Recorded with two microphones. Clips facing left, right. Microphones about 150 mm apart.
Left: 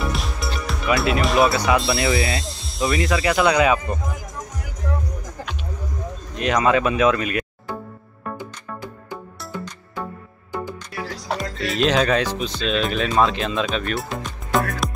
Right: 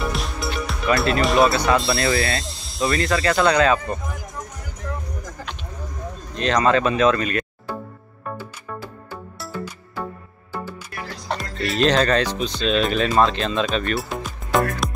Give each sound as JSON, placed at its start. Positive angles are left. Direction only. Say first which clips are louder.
{"t": 0.0, "sound": "speech", "louder": "right 1 dB", "side_deg": 0}
{"t": 6.3, "sound": "speech", "louder": "even", "side_deg": 10}
{"t": 8.4, "sound": "music", "louder": "even", "side_deg": 15}
{"t": 11.2, "sound": "music", "louder": "even", "side_deg": 0}
{"t": 11.8, "sound": "speech", "louder": "right 1 dB", "side_deg": 5}